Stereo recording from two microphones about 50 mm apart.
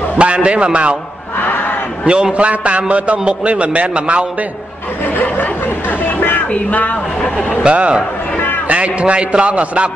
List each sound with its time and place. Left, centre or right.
0.2 s a man's voice: right
2.0 s a man's voice: centre
5.1 s speech: left
7.2 s speech: centre
7.6 s a man's voice: right